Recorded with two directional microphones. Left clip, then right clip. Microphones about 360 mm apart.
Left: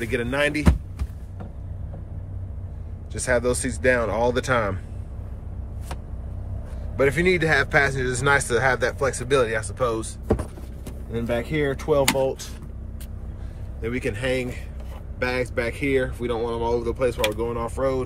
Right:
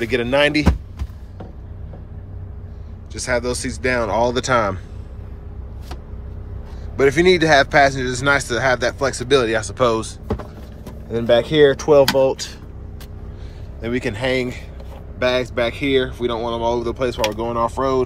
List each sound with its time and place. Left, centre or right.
0.0 s speech: centre
3.1 s speech: centre
7.0 s speech: centre
11.1 s speech: right
13.7 s speech: centre